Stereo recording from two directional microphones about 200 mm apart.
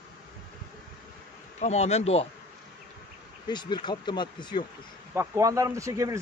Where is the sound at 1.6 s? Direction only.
35° left (ahead or behind).